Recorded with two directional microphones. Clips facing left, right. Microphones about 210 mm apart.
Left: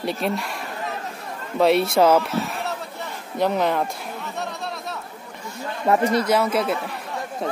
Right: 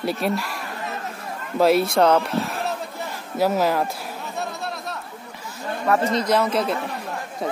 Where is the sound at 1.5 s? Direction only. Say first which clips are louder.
Even; centre (ahead or behind).